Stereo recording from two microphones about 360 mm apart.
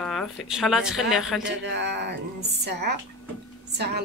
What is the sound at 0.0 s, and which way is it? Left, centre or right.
Speech, centre.